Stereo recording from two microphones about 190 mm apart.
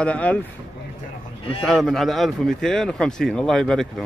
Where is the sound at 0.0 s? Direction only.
5° left (ahead or behind).